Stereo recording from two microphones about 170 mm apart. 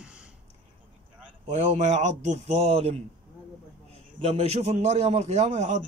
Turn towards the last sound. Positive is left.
turn(degrees=-40)  # may be behind; listen again after turning